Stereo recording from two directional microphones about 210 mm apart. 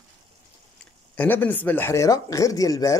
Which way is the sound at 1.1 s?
10° left (ahead or behind).